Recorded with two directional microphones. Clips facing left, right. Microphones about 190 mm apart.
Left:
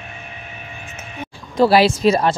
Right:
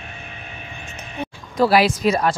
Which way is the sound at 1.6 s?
30° left (ahead or behind).